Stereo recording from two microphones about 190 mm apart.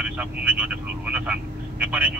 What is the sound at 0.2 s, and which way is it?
Speech, 5° right (ahead or behind).